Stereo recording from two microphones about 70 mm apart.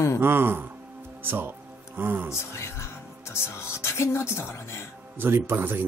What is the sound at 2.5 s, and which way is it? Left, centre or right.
Speech, left.